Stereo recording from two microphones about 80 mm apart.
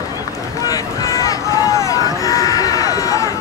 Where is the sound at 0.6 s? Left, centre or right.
Left.